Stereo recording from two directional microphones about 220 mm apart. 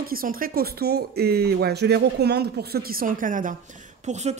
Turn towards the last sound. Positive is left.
turn(degrees=-30)  # may be behind; listen again after turning